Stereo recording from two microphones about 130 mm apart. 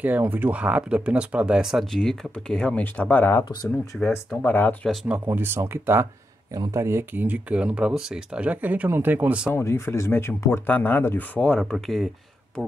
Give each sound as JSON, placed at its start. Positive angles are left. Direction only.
{"t": 0.0, "sound": "speech", "side_deg": -15}
{"t": 4.8, "sound": "speech", "side_deg": -10}
{"t": 9.5, "sound": "speech", "side_deg": 20}